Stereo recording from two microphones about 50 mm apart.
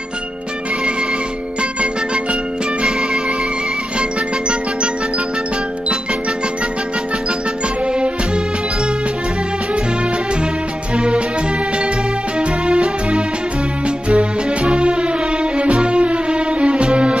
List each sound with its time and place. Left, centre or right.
2.8 s music: centre
7.8 s music: centre
11.0 s music: right
12.4 s music: right